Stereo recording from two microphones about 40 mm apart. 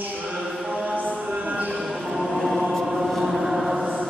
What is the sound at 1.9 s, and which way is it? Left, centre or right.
Music, centre.